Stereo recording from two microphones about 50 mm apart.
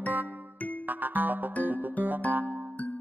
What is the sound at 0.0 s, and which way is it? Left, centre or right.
Music, right.